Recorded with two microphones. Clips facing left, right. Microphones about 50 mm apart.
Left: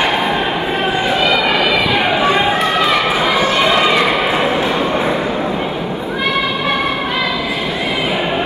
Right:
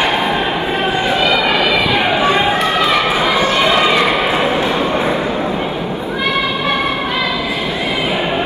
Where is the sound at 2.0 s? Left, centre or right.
Centre.